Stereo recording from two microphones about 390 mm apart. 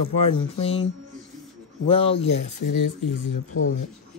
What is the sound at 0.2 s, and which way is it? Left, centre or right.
Speech, centre.